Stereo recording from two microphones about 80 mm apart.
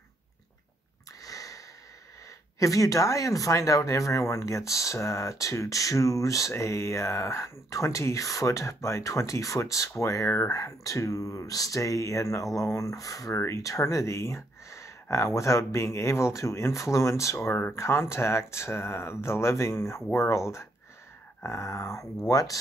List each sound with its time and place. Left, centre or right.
1.2 s sniff: left
2.6 s speech: left